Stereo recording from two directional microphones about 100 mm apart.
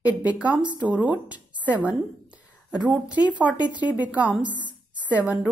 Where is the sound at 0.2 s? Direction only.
15° right (ahead or behind).